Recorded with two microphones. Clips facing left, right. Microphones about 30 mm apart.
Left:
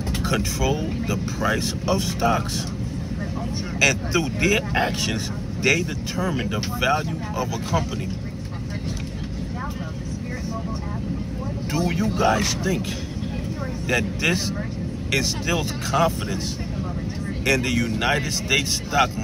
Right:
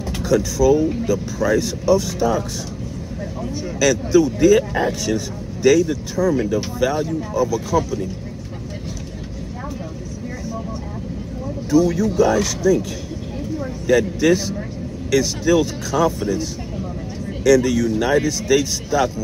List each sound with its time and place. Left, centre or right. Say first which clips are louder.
0.1 s speech: right 6 dB; left
3.8 s speech: right 5 dB; left
11.7 s speech: right 8 dB; left
13.8 s speech: right 7 dB; left
17.5 s speech: right 7 dB; left